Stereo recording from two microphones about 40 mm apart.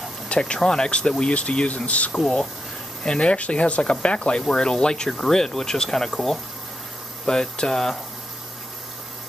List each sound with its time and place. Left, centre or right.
0.4 s speech: centre; by 2.1 s left
3.0 s speech: left; by 6.4 s centre
7.2 s speech: centre